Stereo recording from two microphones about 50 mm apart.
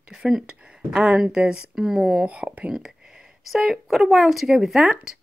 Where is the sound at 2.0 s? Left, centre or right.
Right.